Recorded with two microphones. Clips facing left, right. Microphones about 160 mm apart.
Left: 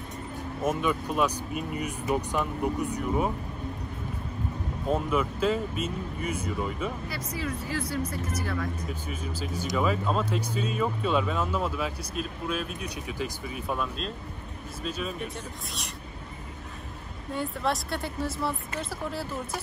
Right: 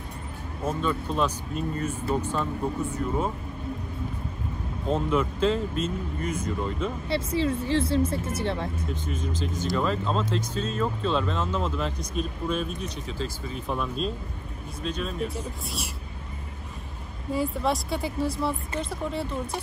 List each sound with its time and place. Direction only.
0.7 s speech: 15° left (ahead or behind)
4.8 s speech: 10° left (ahead or behind)
7.1 s speech: 30° right (ahead or behind)
8.8 s speech: 10° left (ahead or behind)
17.3 s speech: centre (ahead or behind)